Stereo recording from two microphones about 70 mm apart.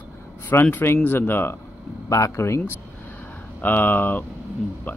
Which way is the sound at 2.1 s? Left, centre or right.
Left.